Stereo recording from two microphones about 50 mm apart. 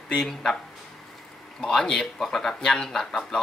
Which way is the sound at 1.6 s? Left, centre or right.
Centre.